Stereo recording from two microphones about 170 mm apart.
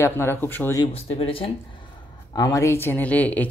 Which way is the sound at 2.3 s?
20° left (ahead or behind).